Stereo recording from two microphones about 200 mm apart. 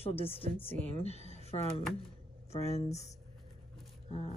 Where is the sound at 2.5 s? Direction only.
30° left (ahead or behind).